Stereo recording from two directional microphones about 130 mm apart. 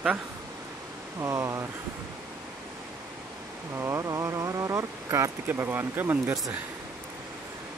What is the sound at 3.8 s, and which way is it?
Speech, 20° right (ahead or behind).